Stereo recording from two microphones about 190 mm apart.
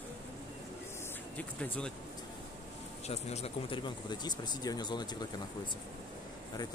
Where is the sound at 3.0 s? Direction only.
35° left (ahead or behind).